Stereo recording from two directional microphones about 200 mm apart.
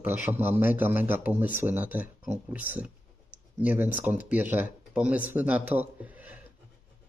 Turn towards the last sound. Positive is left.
turn(degrees=-10)  # may be behind; listen again after turning